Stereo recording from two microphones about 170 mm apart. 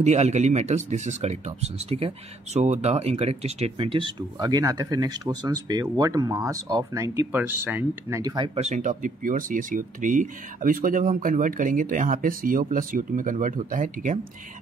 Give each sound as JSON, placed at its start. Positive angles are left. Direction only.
{"t": 0.0, "sound": "speech", "side_deg": -40}
{"t": 8.5, "sound": "speech", "side_deg": -40}